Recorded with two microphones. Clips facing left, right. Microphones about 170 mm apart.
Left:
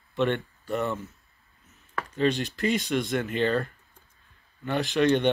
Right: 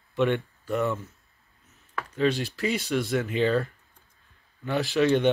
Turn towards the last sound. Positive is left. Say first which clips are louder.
# even
turn(degrees=-5)  # may be behind; listen again after turning